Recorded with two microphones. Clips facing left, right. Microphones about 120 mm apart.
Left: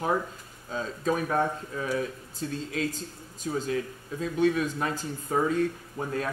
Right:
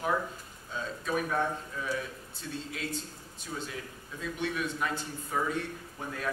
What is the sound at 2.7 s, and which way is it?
Speech, 40° left (ahead or behind).